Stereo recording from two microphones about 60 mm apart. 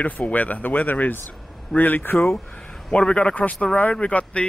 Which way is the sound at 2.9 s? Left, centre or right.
Centre.